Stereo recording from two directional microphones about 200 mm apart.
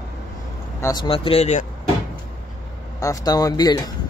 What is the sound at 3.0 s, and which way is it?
Speech, 15° left (ahead or behind).